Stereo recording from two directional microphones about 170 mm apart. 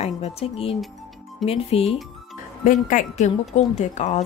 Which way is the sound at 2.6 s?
50° left (ahead or behind).